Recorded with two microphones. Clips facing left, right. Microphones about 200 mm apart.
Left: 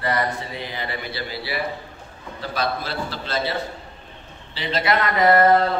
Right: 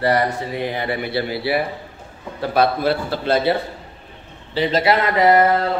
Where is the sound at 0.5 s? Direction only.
55° right (ahead or behind).